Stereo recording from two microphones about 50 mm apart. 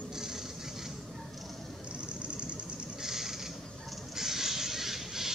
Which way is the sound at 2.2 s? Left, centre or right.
Right.